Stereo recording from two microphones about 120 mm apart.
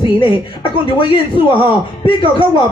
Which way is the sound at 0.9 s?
40° left (ahead or behind).